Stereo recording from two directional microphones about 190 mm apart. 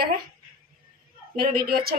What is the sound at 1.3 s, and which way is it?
Speech, 50° right (ahead or behind).